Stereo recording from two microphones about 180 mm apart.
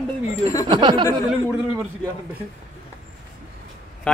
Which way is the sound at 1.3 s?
5° right (ahead or behind).